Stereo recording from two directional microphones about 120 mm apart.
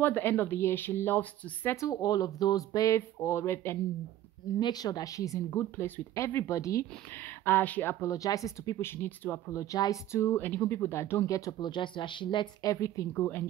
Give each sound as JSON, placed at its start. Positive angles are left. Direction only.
{"t": 0.0, "sound": "speech", "side_deg": 20}
{"t": 1.8, "sound": "speech", "side_deg": 30}
{"t": 4.6, "sound": "speech", "side_deg": 35}
{"t": 12.6, "sound": "speech", "side_deg": 25}